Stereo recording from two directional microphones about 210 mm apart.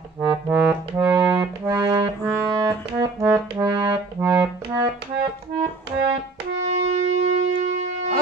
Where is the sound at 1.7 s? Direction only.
15° right (ahead or behind).